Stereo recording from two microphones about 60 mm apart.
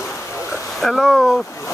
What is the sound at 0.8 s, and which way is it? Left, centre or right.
Speech, centre.